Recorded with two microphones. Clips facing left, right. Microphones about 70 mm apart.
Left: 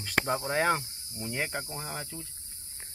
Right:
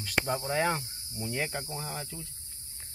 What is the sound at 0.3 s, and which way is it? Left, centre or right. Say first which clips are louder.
Speech: left 2 dB; left.